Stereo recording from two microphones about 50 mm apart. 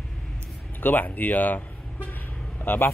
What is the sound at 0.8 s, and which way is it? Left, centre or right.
Speech, left.